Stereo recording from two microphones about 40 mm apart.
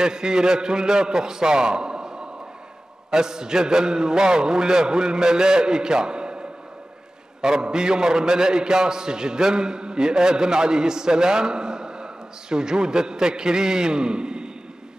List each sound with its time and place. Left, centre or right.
0.0 s a man's voice: centre
7.4 s a man's voice: centre